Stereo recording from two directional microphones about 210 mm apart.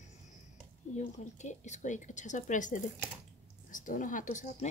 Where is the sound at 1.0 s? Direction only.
35° left (ahead or behind).